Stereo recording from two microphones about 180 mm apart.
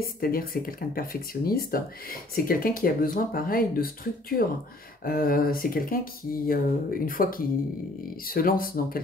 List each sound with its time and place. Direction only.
0.2 s speech: 55° left (ahead or behind)